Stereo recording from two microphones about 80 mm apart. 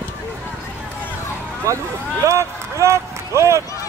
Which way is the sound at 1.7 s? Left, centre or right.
Right.